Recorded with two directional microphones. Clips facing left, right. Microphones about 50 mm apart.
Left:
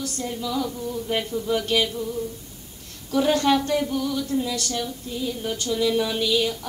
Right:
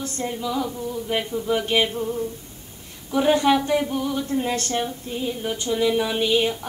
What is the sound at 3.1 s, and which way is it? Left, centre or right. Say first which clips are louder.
A woman's voice: right 2 dB; centre.